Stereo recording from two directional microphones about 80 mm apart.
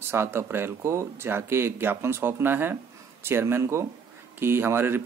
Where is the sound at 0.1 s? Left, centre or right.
Right.